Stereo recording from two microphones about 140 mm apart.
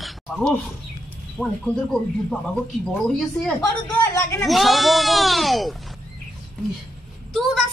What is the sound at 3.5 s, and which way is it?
Speech, 20° left (ahead or behind).